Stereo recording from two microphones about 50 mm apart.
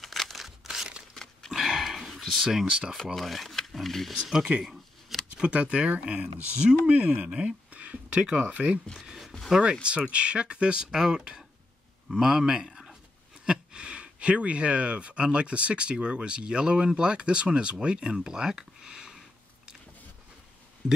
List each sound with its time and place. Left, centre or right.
0.0 s crumpling: centre
1.1 s a sound: centre
1.5 s a sound: centre
2.6 s speech: centre
3.2 s speech: centre
4.1 s speech: centre
5.3 s speech: right
9.8 s speech: right
13.5 s speech: right
20.8 s speech: centre